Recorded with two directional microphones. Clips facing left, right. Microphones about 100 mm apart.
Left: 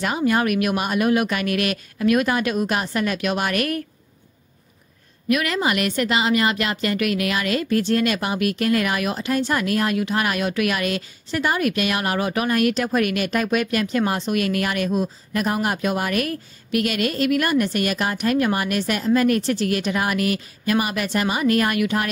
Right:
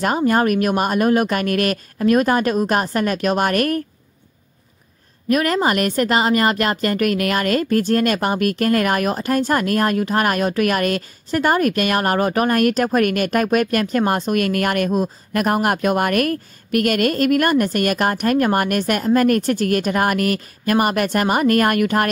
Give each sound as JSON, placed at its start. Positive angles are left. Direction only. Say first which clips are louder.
{"t": 0.0, "sound": "speech", "louder": "right 3 dB", "side_deg": -40}
{"t": 5.3, "sound": "a woman's voice", "louder": "right 4 dB", "side_deg": -40}